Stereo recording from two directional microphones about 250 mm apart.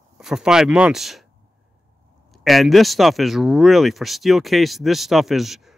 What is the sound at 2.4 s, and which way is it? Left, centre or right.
Speech, centre.